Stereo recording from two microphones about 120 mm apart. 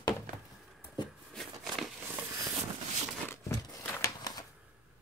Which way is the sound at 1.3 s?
Centre (ahead or behind).